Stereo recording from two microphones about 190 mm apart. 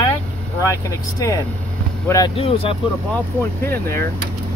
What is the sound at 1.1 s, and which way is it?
Speech, 15° left (ahead or behind).